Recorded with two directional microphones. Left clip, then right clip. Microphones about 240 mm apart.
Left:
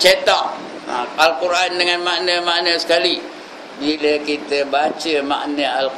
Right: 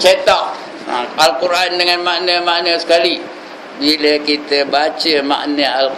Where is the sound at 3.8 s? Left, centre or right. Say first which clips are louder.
Right 5 dB; centre.